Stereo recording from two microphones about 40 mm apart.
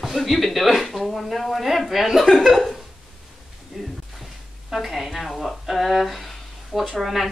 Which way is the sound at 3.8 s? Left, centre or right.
Centre.